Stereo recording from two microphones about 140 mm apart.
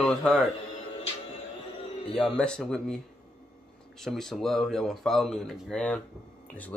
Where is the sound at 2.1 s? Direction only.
5° left (ahead or behind).